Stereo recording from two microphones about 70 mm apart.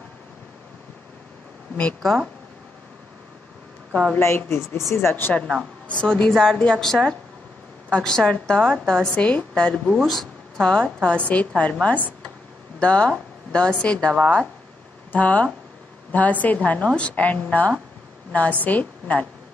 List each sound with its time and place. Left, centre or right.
2.0 s speech: centre
3.9 s a woman's voice: centre
4.5 s speech: left
5.9 s a woman's voice: centre
15.1 s a woman's voice: left